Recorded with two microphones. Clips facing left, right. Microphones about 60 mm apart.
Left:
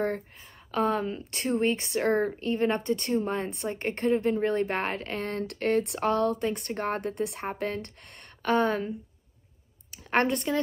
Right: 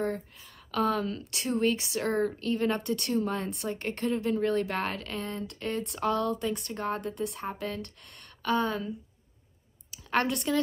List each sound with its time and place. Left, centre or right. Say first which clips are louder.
0.7 s a woman's voice: left 1 dB; left
10.1 s speech: left 2 dB; left